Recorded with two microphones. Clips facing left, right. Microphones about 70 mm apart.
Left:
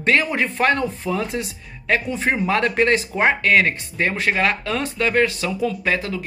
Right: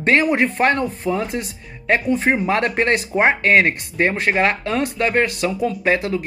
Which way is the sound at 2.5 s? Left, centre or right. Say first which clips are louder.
Even; right.